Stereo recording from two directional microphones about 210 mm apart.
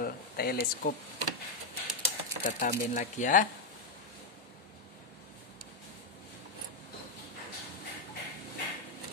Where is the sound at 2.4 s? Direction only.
35° left (ahead or behind).